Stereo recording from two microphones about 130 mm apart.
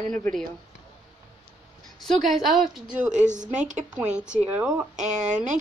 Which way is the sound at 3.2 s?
70° right (ahead or behind).